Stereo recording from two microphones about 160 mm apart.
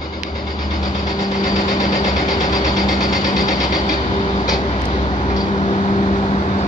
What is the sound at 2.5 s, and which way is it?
Vehicle, 55° left (ahead or behind).